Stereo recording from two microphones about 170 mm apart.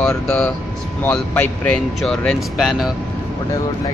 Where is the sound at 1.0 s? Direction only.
10° left (ahead or behind).